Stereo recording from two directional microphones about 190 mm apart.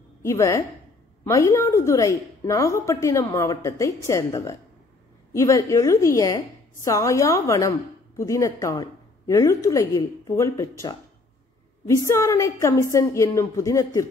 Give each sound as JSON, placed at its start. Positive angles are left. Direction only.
{"t": 0.2, "sound": "a woman's voice", "side_deg": 15}
{"t": 11.9, "sound": "a woman's voice", "side_deg": 15}